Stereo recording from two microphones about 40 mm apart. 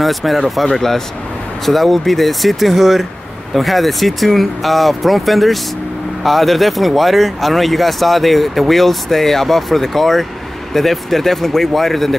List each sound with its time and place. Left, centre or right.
0.0 s speech: centre